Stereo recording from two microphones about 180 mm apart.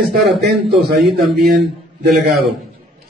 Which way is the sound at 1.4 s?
60° right (ahead or behind).